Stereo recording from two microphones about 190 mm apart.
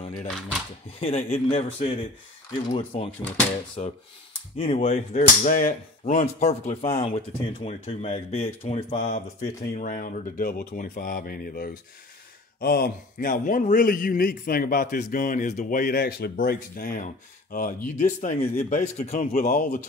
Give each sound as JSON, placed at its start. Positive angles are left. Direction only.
{"t": 1.0, "sound": "speech", "side_deg": 30}
{"t": 3.1, "sound": "speech", "side_deg": 10}
{"t": 3.8, "sound": "a man's voice", "side_deg": 35}